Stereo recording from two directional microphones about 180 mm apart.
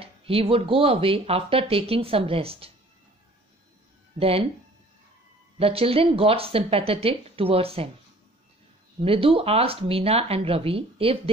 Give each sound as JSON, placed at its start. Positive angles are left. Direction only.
{"t": 0.0, "sound": "speech", "side_deg": -30}
{"t": 4.2, "sound": "speech", "side_deg": -35}
{"t": 5.6, "sound": "speech", "side_deg": -30}
{"t": 9.0, "sound": "speech", "side_deg": -30}